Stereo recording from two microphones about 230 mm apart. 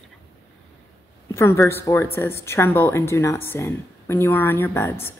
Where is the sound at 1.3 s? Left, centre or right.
Centre.